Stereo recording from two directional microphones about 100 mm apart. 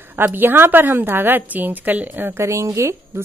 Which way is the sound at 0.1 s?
20° right (ahead or behind).